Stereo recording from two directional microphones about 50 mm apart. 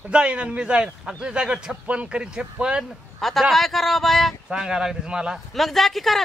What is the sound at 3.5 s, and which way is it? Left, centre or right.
Speech, centre.